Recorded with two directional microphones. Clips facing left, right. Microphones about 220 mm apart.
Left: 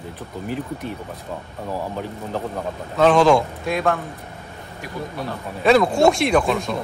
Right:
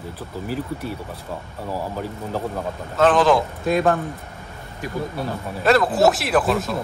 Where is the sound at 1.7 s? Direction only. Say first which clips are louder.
Even; 5° right (ahead or behind).